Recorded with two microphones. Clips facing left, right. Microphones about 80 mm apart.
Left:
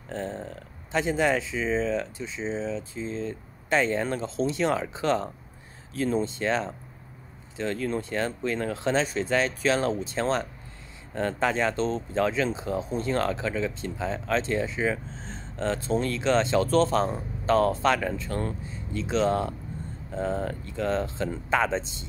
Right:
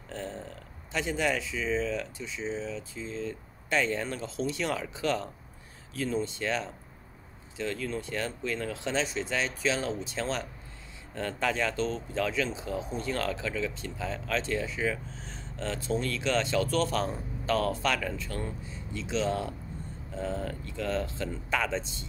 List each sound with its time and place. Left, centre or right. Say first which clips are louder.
0.1 s a sound: left 5 dB; left
0.9 s speech: left 5 dB; left
5.9 s speech: left 5 dB; left
6.2 s speech: left 5 dB; left